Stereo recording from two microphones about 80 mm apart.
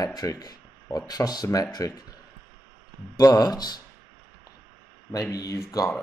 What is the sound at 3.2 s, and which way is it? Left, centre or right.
Speech, left.